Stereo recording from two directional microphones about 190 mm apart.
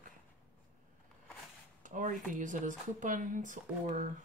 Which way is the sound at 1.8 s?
40° right (ahead or behind).